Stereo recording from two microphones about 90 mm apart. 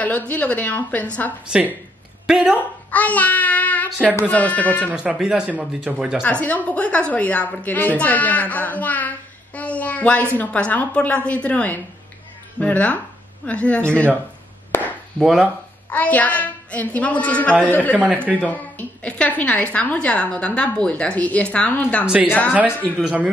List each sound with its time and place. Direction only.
0.3 s a woman's voice: 15° left (ahead or behind)
2.2 s speech: 5° right (ahead or behind)
2.9 s a child's voice: 15° left (ahead or behind)
4.9 s speech: 10° right (ahead or behind)
6.4 s a woman's voice: 15° left (ahead or behind)
14.7 s chop: 20° left (ahead or behind)
15.1 s speech: 5° right (ahead or behind)
15.9 s a woman's voice: 15° left (ahead or behind)
22.0 s speech: 10° right (ahead or behind)
22.8 s a woman's voice: 20° left (ahead or behind)
23.0 s speech: 10° right (ahead or behind)